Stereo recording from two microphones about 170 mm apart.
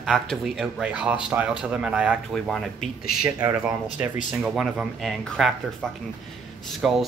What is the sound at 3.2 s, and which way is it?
Speech, 20° right (ahead or behind).